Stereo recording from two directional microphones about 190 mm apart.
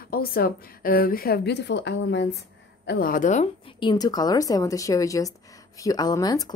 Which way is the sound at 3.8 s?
20° left (ahead or behind).